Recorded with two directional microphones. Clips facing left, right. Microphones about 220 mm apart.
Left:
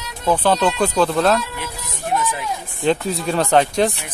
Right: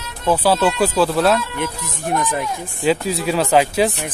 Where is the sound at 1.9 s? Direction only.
50° right (ahead or behind).